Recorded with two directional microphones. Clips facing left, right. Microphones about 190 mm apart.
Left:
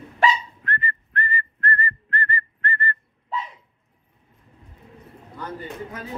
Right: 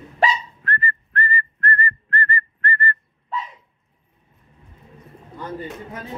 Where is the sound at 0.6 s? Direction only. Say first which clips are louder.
Right 2 dB; 20° left (ahead or behind).